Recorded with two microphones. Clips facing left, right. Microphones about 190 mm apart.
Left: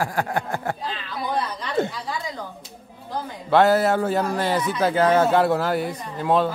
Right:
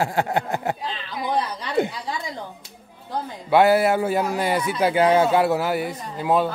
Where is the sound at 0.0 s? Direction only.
25° right (ahead or behind).